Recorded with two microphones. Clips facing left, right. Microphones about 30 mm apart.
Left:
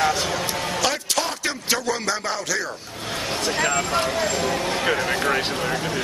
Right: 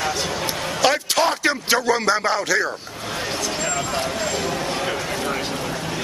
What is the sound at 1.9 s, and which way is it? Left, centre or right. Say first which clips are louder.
Speech: right 6 dB; right.